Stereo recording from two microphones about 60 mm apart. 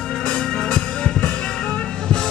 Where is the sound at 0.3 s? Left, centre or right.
Centre.